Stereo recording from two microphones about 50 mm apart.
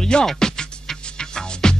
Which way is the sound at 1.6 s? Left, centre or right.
Centre.